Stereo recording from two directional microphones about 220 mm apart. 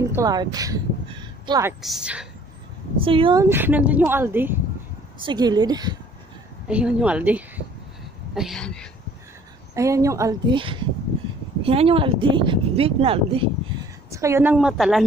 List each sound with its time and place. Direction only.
0.1 s a woman's voice: 15° right (ahead or behind)
1.8 s a woman's voice: centre (ahead or behind)
3.0 s speech: 25° right (ahead or behind)
3.4 s speech: 10° right (ahead or behind)
6.7 s a woman's voice: 5° right (ahead or behind)
9.8 s speech: 15° right (ahead or behind)
14.1 s a woman's voice: 10° right (ahead or behind)